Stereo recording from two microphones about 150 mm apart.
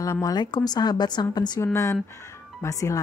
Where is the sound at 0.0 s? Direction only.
25° left (ahead or behind).